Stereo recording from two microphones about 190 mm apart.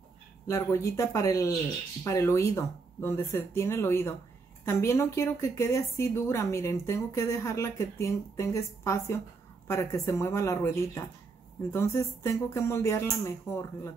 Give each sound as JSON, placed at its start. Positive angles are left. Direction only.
{"t": 0.5, "sound": "a woman's voice", "side_deg": 15}